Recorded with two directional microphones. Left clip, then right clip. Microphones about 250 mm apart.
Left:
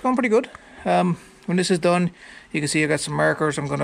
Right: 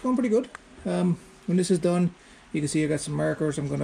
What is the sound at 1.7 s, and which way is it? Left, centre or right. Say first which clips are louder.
Speech: left 6 dB; centre.